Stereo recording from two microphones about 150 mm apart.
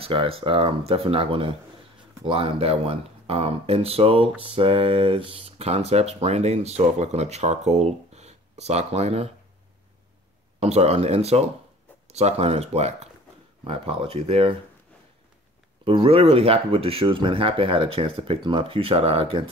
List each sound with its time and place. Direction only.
0.0 s speech: 40° right (ahead or behind)
10.6 s speech: 45° right (ahead or behind)
15.8 s speech: 40° right (ahead or behind)